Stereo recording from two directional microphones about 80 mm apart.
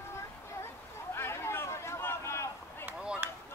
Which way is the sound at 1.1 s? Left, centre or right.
Left.